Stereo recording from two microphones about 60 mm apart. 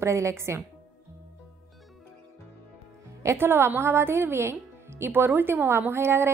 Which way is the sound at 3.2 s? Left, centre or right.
Right.